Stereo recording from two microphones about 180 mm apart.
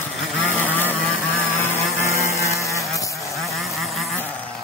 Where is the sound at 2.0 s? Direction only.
15° left (ahead or behind).